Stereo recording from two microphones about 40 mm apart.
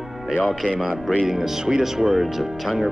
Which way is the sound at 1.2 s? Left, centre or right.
Centre.